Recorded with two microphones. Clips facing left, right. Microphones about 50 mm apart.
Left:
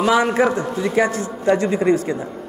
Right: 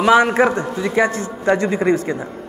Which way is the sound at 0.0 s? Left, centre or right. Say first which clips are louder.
Right 3 dB; right.